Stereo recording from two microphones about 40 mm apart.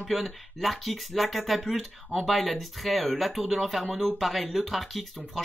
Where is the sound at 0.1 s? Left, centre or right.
Centre.